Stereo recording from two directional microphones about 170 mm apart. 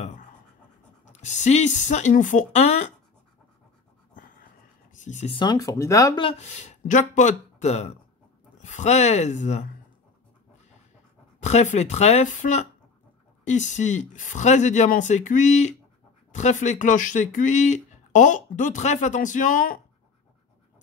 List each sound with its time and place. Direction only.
1.0 s speech: 45° left (ahead or behind)
4.9 s speech: 45° left (ahead or behind)
5.3 s speech: 25° left (ahead or behind)
6.1 s speech: 35° left (ahead or behind)
11.4 s speech: 40° left (ahead or behind)